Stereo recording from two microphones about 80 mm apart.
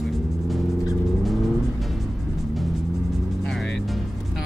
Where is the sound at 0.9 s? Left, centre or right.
Centre.